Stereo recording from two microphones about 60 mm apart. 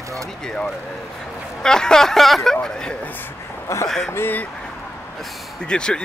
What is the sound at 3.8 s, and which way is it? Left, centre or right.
Speech, centre.